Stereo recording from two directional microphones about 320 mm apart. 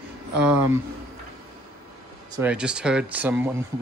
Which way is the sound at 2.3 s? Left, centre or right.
Centre.